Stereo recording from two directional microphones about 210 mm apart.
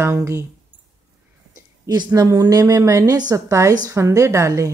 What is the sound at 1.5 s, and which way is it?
A woman's voice, 15° right (ahead or behind).